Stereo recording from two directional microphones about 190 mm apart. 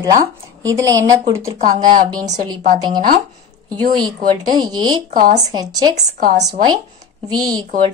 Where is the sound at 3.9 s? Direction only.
25° right (ahead or behind).